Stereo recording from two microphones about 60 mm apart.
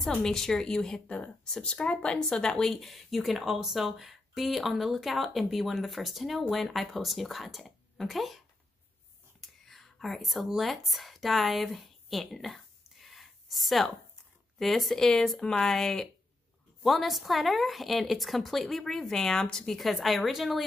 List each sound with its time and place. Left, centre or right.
0.1 s a woman's voice: centre
1.0 s a woman's voice: left
2.7 s speech: centre
9.4 s whispering: centre
10.6 s a woman's voice: centre